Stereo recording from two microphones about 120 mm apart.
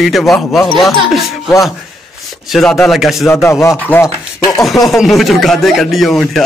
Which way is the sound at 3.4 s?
20° left (ahead or behind).